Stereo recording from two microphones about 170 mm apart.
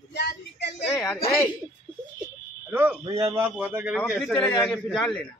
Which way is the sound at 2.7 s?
10° right (ahead or behind).